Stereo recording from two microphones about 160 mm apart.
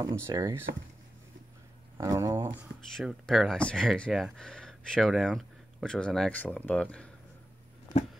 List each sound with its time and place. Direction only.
0.0 s speech: 20° right (ahead or behind)
2.0 s speech: 20° right (ahead or behind)
3.0 s speech: centre (ahead or behind)